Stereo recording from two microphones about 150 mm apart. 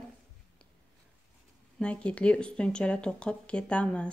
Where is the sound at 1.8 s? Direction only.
5° left (ahead or behind).